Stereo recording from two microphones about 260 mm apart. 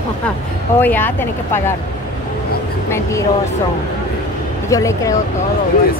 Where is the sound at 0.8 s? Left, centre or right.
Centre.